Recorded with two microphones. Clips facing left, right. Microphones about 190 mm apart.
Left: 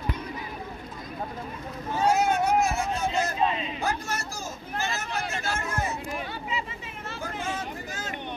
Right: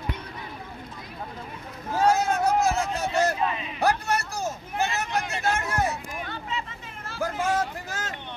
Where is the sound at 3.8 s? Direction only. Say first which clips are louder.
Right 6 dB; 65° right (ahead or behind).